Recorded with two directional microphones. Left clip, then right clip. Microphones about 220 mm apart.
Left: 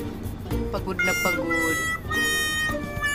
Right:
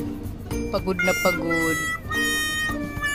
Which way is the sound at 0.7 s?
50° right (ahead or behind).